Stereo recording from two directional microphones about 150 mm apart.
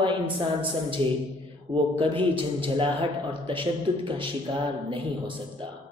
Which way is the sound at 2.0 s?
35° right (ahead or behind).